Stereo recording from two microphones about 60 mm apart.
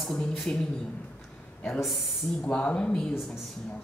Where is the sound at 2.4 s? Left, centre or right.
Centre.